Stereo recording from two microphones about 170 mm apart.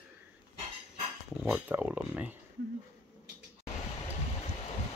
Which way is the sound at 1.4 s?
10° right (ahead or behind).